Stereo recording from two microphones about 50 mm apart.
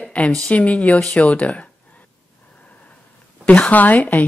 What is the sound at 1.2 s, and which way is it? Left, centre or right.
Speech, left.